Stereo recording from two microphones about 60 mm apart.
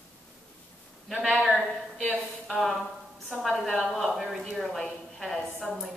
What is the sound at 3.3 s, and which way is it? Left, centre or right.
A woman's voice, centre.